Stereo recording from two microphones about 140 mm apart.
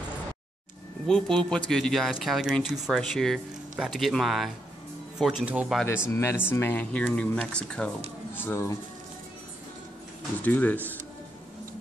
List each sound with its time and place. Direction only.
1.0 s speech: 5° left (ahead or behind)
6.0 s speech: 20° left (ahead or behind)
8.4 s speech: 15° left (ahead or behind)
10.4 s speech: 10° left (ahead or behind)